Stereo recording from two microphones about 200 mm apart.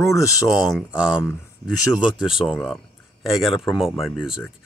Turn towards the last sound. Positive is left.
turn(degrees=0)  # may be behind; listen again after turning